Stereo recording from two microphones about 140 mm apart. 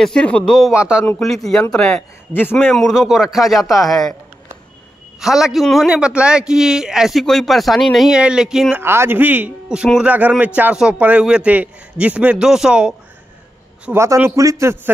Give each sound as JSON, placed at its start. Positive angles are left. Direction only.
{"t": 0.0, "sound": "a man's voice", "side_deg": 5}
{"t": 5.2, "sound": "a man's voice", "side_deg": -5}
{"t": 8.8, "sound": "a man's voice", "side_deg": -15}
{"t": 13.8, "sound": "a man's voice", "side_deg": -20}